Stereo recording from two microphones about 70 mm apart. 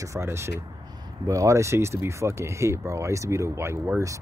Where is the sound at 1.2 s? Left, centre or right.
Right.